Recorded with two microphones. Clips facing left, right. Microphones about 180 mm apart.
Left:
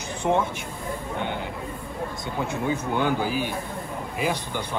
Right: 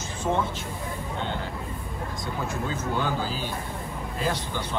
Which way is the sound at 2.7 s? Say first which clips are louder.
Left 5 dB; 15° left (ahead or behind).